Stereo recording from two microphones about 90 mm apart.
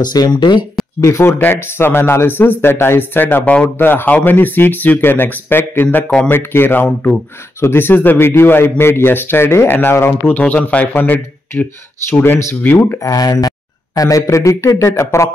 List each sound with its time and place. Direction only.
0.0 s speech: 50° left (ahead or behind)
1.0 s a man's voice: 35° left (ahead or behind)
13.0 s speech: 45° left (ahead or behind)